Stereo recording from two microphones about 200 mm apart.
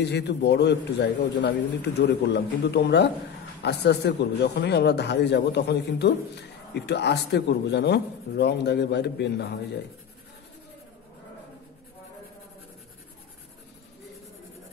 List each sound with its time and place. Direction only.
0.0 s speech: 60° left (ahead or behind)